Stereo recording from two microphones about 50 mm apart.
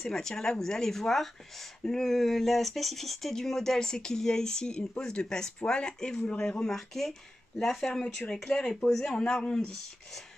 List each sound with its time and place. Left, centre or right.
0.0 s speech: centre